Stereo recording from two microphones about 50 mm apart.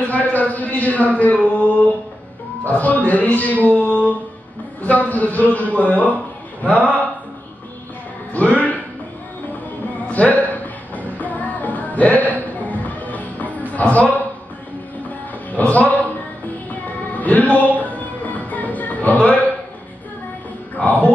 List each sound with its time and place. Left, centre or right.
0.1 s a man's voice: left
3.6 s a sound: left
4.8 s a man's voice: left
8.3 s music: left
9.9 s music: left
20.7 s a sound: left